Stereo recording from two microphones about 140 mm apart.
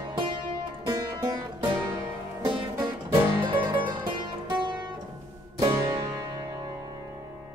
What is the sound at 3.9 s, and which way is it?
Music, 30° right (ahead or behind).